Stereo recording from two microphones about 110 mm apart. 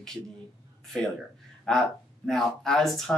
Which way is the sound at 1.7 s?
5° left (ahead or behind).